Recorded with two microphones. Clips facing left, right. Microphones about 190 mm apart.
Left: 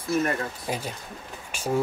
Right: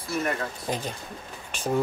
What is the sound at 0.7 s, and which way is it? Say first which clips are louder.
Speech: right 1 dB; 10° left (ahead or behind).